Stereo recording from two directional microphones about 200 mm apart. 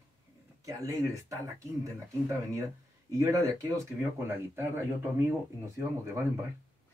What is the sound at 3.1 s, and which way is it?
Speech, 15° right (ahead or behind).